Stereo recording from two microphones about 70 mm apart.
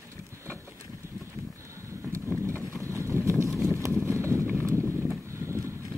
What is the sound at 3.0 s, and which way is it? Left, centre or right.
Boat, right.